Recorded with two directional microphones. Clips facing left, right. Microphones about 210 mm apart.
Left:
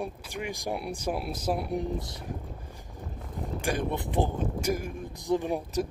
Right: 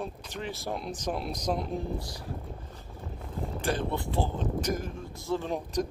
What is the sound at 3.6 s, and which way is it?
Speech, 15° left (ahead or behind).